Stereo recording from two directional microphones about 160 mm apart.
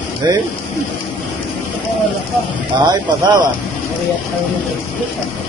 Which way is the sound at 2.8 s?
25° right (ahead or behind).